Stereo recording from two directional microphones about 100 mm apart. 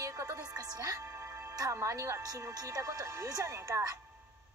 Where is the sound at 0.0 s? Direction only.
30° right (ahead or behind).